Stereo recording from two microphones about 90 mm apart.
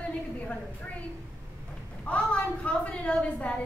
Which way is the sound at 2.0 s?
15° left (ahead or behind).